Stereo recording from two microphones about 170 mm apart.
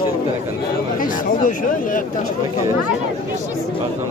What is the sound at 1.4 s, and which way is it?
Speech, 50° left (ahead or behind).